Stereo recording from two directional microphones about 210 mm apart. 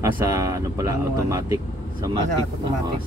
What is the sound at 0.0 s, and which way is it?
Speech, 15° right (ahead or behind).